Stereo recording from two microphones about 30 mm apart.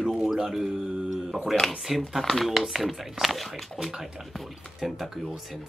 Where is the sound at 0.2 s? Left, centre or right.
Centre.